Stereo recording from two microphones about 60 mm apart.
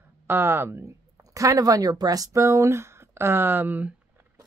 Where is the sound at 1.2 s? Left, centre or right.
Right.